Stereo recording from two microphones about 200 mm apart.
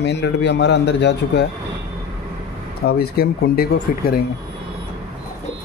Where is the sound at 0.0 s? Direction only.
60° left (ahead or behind).